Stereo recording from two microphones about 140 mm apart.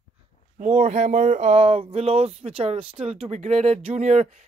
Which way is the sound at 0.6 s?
55° right (ahead or behind).